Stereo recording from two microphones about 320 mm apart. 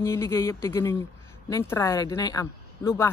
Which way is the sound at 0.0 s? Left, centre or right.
Centre.